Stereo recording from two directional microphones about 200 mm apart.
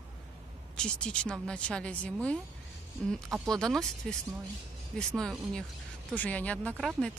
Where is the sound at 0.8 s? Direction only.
5° left (ahead or behind).